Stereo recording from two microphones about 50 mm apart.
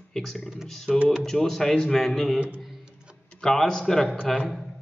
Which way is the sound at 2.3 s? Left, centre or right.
Right.